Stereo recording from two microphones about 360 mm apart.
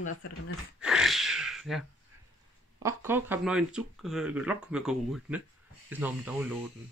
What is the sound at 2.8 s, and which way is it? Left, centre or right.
Speech, centre.